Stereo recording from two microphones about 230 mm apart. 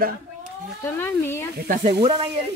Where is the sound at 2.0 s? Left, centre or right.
Right.